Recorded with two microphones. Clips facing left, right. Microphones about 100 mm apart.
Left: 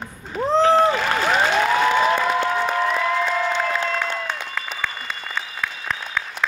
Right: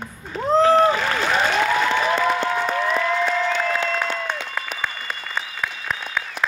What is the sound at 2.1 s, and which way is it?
Applause, 5° left (ahead or behind).